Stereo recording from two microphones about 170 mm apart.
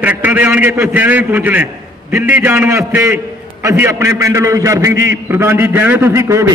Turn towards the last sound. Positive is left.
turn(degrees=-15)  # may be behind; listen again after turning